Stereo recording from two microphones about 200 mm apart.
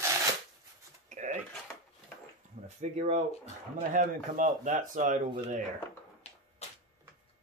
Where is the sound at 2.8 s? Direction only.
35° right (ahead or behind).